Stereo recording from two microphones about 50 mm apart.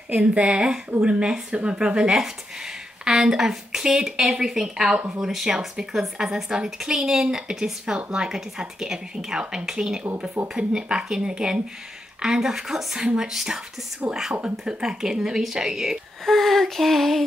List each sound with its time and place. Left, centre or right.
0.1 s a woman's voice: right; by 13.6 s centre
14.0 s speech: right
14.4 s speech: centre
16.3 s a sound: centre